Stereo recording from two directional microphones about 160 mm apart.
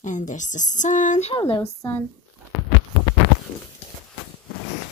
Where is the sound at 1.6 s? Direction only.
20° left (ahead or behind).